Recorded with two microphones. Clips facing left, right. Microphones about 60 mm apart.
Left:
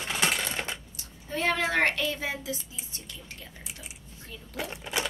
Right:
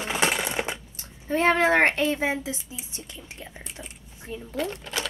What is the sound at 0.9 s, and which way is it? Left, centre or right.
A woman's voice, right.